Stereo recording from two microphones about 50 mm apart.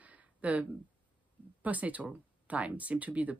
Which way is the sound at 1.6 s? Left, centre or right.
Right.